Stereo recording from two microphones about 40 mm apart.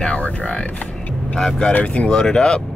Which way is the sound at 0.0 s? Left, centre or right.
Left.